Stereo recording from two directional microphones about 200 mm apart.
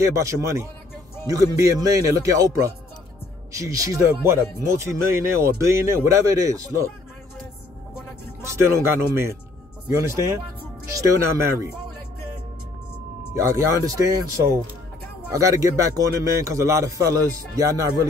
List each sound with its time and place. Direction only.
0.0 s speech: 15° right (ahead or behind)
8.4 s speech: 15° right (ahead or behind)
13.3 s speech: 15° right (ahead or behind)